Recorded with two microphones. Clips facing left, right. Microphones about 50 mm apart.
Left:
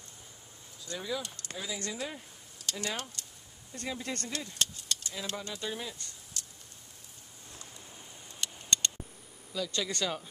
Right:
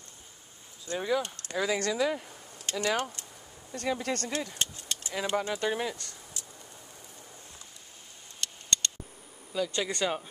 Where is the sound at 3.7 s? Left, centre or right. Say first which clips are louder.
Right 6 dB; right.